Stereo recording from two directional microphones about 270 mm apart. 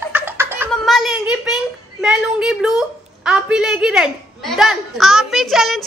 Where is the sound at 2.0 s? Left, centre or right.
Centre.